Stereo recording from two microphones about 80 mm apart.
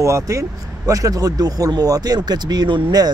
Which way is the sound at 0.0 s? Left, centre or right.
Right.